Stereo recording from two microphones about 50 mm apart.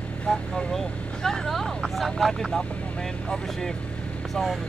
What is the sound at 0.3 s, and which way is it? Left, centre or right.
Speech, centre.